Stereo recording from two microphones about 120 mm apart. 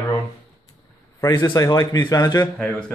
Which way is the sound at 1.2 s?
35° left (ahead or behind).